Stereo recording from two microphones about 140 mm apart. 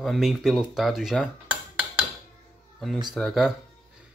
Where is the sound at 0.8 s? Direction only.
Centre (ahead or behind).